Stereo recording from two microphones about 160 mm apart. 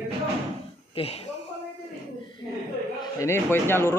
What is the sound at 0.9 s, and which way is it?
Speech, 40° left (ahead or behind).